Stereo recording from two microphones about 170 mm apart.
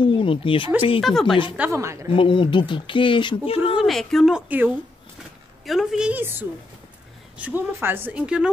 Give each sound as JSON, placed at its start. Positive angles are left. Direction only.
{"t": 0.0, "sound": "speech", "side_deg": 30}
{"t": 1.0, "sound": "a woman's voice", "side_deg": 0}
{"t": 1.6, "sound": "a woman's voice", "side_deg": -15}
{"t": 2.1, "sound": "speech", "side_deg": 30}
{"t": 3.7, "sound": "a woman's voice", "side_deg": 0}
{"t": 4.5, "sound": "a woman's voice", "side_deg": -10}
{"t": 7.3, "sound": "a woman's voice", "side_deg": -10}